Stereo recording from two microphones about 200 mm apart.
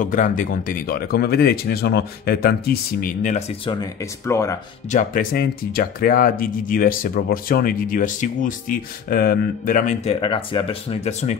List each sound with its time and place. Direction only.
0.0 s speech: 40° left (ahead or behind)
3.8 s speech: 15° left (ahead or behind)
4.9 s speech: 45° left (ahead or behind)
10.2 s speech: 25° left (ahead or behind)